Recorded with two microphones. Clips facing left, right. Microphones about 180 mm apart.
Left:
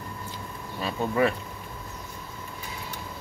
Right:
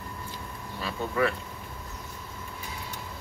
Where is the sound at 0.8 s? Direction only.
20° left (ahead or behind).